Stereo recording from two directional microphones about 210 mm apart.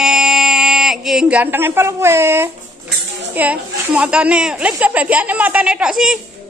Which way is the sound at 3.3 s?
5° right (ahead or behind).